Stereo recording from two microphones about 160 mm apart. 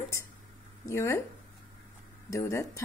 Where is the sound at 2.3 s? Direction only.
15° left (ahead or behind).